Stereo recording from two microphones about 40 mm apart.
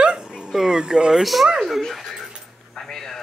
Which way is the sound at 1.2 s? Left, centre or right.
Centre.